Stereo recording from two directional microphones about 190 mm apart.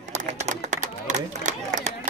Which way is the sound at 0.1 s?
40° right (ahead or behind).